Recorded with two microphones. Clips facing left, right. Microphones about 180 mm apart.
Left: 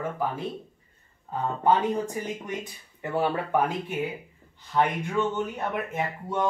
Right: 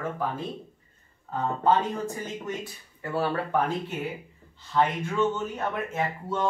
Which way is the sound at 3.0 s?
15° left (ahead or behind).